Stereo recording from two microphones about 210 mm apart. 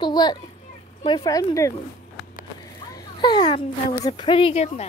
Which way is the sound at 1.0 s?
20° left (ahead or behind).